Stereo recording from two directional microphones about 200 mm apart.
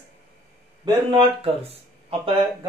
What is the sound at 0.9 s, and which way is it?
Speech, 25° right (ahead or behind).